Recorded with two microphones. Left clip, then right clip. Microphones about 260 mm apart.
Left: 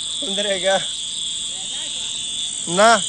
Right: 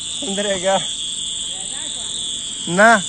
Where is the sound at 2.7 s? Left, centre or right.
Centre.